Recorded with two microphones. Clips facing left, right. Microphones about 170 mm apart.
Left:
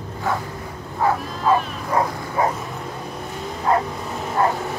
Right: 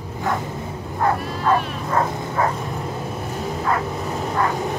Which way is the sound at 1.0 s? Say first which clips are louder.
Even; centre (ahead or behind).